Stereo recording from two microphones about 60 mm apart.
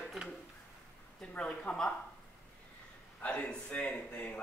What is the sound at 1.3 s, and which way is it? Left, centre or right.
Speech, centre.